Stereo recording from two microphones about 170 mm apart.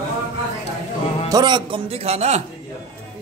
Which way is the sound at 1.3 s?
25° right (ahead or behind).